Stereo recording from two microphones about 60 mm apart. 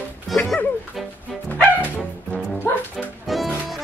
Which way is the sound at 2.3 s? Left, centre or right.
Centre.